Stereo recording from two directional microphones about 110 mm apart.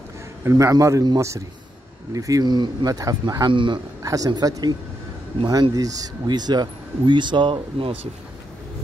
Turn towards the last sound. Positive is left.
turn(degrees=-55)  # may be behind; listen again after turning